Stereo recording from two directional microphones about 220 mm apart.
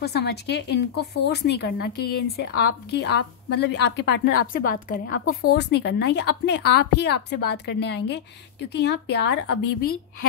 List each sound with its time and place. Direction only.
0.0 s a woman's voice: 50° left (ahead or behind)